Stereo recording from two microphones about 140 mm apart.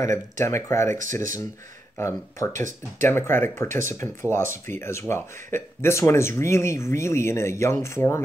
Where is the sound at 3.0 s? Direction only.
15° left (ahead or behind).